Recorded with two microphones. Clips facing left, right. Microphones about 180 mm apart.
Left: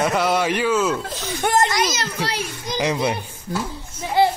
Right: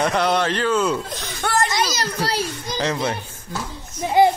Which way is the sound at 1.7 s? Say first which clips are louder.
Left 1 dB; 35° right (ahead or behind).